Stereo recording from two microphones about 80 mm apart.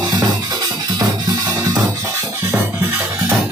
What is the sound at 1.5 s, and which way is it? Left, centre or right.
Drum, right.